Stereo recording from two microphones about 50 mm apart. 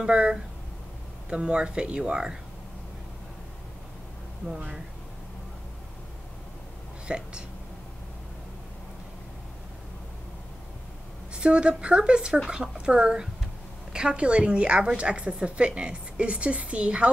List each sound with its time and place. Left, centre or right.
0.0 s a woman's voice: centre
7.1 s a woman's voice: centre
11.3 s a woman's voice: centre